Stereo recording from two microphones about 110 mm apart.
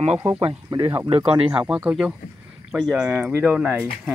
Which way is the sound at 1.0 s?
60° right (ahead or behind).